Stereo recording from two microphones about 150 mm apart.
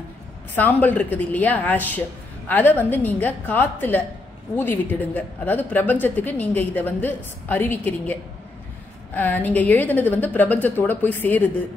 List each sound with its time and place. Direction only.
0.6 s a woman's voice: 10° left (ahead or behind)